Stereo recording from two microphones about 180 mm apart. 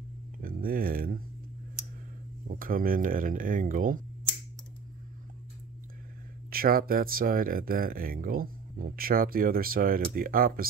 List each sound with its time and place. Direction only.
0.4 s speech: 55° right (ahead or behind)
2.4 s speech: 50° right (ahead or behind)
6.5 s speech: 55° right (ahead or behind)